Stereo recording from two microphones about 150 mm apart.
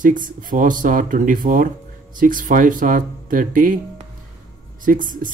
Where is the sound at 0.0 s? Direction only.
60° right (ahead or behind).